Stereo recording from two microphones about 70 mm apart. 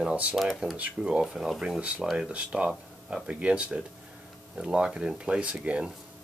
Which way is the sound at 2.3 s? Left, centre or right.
Centre.